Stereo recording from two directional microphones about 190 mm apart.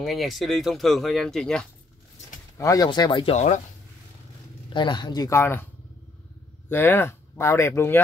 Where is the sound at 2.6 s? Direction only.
20° left (ahead or behind); by 3.6 s 35° left (ahead or behind).